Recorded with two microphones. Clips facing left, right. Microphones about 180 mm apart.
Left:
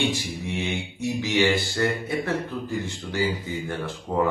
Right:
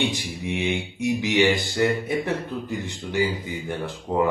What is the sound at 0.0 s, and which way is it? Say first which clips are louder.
Speech: even; 15° right (ahead or behind).